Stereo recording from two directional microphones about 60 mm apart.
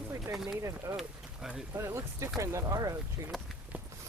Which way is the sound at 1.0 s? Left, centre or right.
Centre.